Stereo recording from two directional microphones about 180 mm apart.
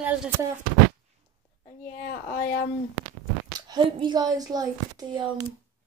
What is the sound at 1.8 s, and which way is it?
Speech, 50° left (ahead or behind).